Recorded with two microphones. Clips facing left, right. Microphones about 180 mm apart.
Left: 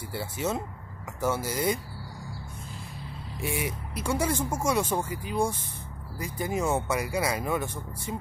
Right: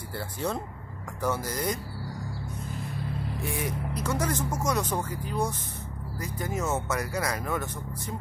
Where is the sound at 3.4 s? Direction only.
20° left (ahead or behind).